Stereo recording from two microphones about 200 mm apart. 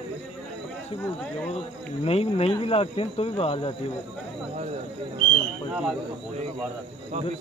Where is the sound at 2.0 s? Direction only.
30° left (ahead or behind).